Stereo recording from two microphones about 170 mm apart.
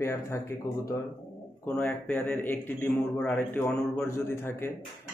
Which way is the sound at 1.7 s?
10° left (ahead or behind).